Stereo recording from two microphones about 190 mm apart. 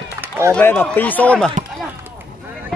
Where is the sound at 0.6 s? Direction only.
10° left (ahead or behind).